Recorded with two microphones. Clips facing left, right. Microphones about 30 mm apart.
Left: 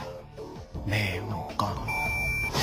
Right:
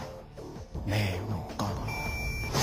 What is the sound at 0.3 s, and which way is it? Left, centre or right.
Music, left.